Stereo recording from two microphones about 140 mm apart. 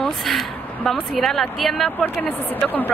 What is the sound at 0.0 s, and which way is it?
A woman's voice, centre (ahead or behind).